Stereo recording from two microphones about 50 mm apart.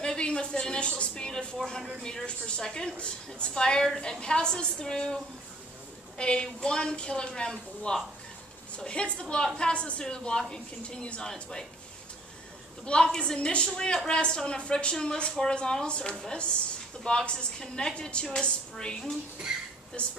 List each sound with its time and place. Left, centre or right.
0.0 s a woman's voice: centre
1.6 s speech: centre
2.0 s a woman's voice: centre
12.8 s a woman's voice: centre
19.5 s speech: centre
20.0 s a woman's voice: left